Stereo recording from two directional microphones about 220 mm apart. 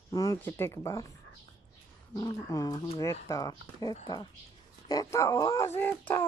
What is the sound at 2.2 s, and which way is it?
Speech, 15° left (ahead or behind).